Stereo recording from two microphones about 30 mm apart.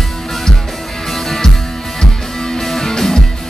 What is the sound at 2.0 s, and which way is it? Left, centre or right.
Music, left.